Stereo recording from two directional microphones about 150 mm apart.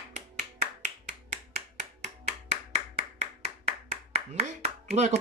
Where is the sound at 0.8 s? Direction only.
50° right (ahead or behind).